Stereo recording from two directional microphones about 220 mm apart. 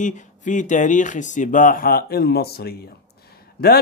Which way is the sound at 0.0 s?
35° left (ahead or behind).